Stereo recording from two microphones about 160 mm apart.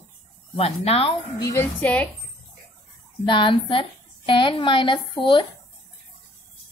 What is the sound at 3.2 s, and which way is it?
A woman's voice, 30° left (ahead or behind).